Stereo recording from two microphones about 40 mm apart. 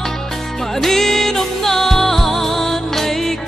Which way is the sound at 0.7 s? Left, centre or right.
Centre.